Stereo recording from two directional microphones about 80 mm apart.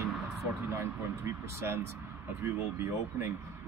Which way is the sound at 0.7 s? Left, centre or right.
Right.